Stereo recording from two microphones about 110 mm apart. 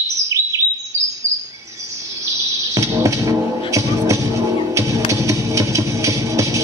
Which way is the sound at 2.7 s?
30° right (ahead or behind).